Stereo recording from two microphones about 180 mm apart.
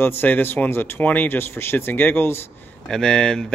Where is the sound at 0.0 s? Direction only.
10° left (ahead or behind).